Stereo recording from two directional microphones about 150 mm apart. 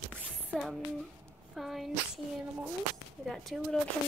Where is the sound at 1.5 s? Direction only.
Centre (ahead or behind).